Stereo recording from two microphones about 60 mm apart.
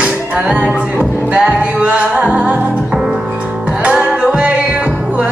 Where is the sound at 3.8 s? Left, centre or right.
Right.